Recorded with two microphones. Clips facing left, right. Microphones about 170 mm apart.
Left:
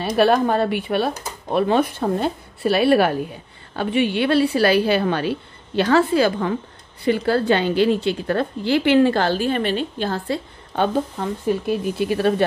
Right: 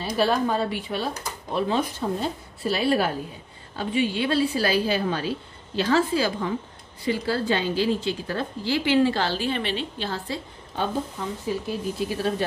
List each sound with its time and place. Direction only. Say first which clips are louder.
0.0 s a woman's voice: left 6 dB; 65° left (ahead or behind)